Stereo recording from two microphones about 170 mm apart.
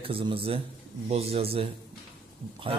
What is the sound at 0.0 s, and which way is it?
A man's voice, 30° right (ahead or behind).